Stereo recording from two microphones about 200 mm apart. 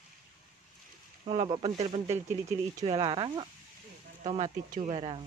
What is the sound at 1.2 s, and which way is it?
Speech, 25° right (ahead or behind).